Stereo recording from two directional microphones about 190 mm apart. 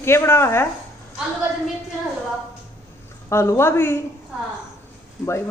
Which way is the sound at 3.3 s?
15° left (ahead or behind).